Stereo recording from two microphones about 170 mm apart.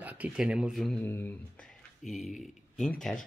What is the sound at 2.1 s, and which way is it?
Speech, centre (ahead or behind).